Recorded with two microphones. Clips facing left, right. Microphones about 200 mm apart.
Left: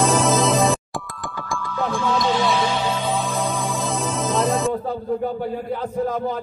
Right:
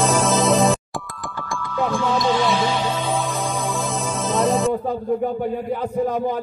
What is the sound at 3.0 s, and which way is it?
Music, centre (ahead or behind).